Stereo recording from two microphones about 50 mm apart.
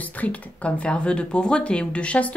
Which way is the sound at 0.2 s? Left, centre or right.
Left.